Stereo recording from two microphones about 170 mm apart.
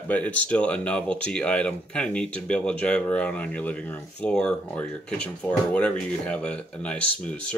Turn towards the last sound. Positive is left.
turn(degrees=5)  # may be behind; listen again after turning